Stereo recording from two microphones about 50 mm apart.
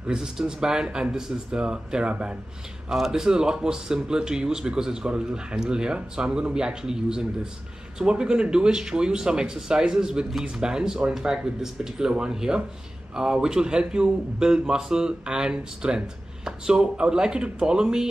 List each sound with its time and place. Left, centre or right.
0.1 s speech: centre
2.9 s speech: centre